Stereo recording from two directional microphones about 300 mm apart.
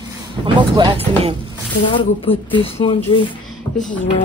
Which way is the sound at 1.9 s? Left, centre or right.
Centre.